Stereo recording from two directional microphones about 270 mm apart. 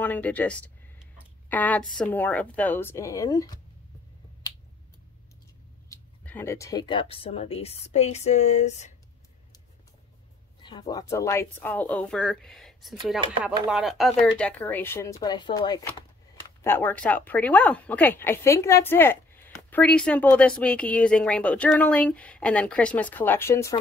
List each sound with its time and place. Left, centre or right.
0.0 s speech: centre
5.9 s speech: centre; by 8.9 s left
10.6 s speech: centre